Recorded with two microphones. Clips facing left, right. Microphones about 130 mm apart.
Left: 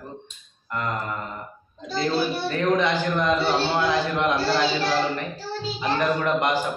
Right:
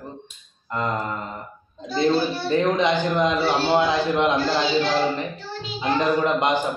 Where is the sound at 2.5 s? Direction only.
20° right (ahead or behind).